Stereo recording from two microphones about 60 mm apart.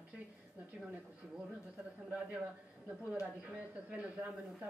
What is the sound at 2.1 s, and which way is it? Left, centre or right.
Speech, centre.